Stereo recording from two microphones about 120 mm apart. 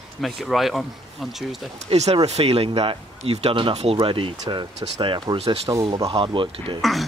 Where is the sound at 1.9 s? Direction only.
60° right (ahead or behind); by 5.4 s 45° right (ahead or behind).